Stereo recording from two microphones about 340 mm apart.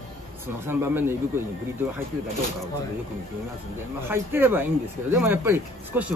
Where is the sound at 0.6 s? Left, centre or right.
Centre.